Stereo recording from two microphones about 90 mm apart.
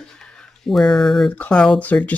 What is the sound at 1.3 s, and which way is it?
Speech, 15° left (ahead or behind).